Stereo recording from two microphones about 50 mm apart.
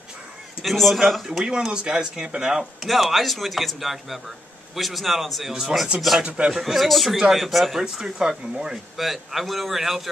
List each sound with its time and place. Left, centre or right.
0.6 s speech: centre
1.4 s speech: centre
2.9 s speech: centre
6.2 s a man's voice: centre
6.5 s speech: centre
7.8 s speech: centre